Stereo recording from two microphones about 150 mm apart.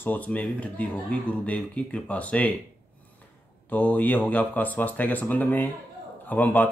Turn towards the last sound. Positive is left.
turn(degrees=10)  # may be behind; listen again after turning